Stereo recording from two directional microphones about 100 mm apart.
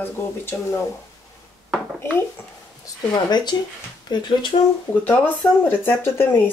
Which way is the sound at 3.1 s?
45° left (ahead or behind).